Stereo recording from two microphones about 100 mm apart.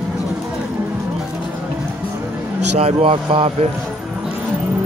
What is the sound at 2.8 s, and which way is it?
Speech, 85° right.